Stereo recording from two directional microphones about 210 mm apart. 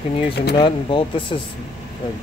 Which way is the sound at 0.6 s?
25° left (ahead or behind).